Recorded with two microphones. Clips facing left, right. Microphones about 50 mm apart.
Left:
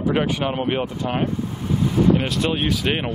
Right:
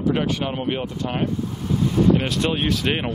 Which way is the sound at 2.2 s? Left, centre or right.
Centre.